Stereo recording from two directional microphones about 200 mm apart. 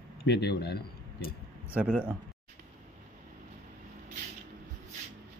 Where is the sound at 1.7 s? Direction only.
5° right (ahead or behind).